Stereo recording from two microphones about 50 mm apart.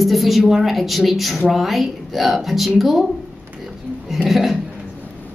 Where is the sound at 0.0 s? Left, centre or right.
Centre.